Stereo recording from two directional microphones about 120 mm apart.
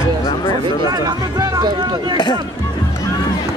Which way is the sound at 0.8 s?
30° right (ahead or behind).